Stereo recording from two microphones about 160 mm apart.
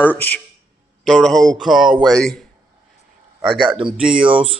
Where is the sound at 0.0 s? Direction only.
10° left (ahead or behind).